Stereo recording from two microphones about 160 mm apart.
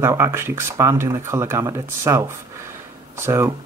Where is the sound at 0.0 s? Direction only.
15° right (ahead or behind).